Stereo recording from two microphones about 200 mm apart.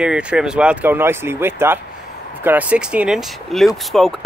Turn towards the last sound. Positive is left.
turn(degrees=0)  # may be behind; listen again after turning